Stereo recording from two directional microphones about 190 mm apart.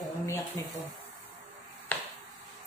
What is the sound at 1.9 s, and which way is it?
Finger snapping, 10° left (ahead or behind).